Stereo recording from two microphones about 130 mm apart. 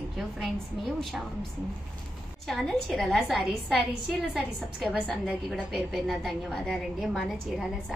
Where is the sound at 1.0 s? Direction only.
Centre (ahead or behind).